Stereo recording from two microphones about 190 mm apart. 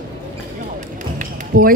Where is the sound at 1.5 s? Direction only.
45° right (ahead or behind).